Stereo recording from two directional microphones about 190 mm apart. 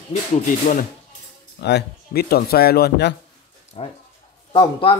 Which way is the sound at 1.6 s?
60° left (ahead or behind).